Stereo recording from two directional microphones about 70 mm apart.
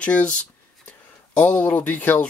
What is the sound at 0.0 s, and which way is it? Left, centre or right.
Speech, centre.